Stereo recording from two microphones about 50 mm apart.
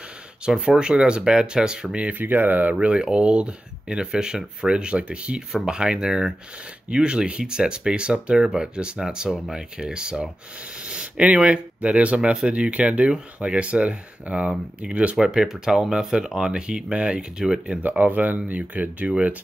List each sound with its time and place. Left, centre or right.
0.5 s speech: centre
2.0 s speech: right
2.7 s speech: right
15.1 s speech: centre
17.8 s speech: right